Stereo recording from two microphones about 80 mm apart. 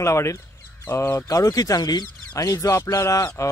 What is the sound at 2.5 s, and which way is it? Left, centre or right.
Speech, left.